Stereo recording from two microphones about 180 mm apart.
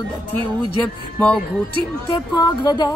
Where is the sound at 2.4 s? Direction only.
20° left (ahead or behind).